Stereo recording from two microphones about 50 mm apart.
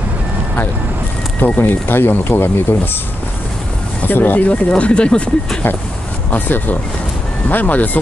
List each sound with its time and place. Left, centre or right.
1.4 s speech: left
4.1 s speech: left
6.3 s speech: left